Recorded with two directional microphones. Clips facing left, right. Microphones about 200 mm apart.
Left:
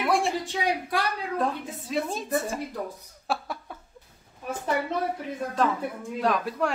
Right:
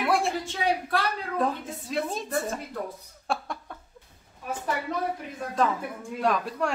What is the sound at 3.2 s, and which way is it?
Laughter, 5° left (ahead or behind).